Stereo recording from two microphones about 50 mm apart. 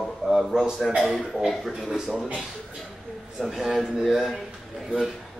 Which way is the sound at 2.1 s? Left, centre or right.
Right.